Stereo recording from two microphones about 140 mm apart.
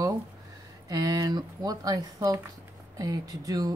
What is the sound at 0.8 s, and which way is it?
Speech, 25° right (ahead or behind).